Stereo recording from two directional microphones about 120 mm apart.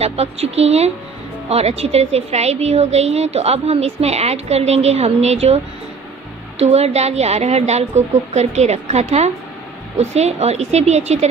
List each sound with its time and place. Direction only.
0.0 s a woman's voice: 60° right (ahead or behind)
6.6 s a woman's voice: 65° right (ahead or behind)